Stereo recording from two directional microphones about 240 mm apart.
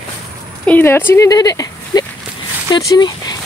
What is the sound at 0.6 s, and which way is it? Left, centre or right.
Speech, centre.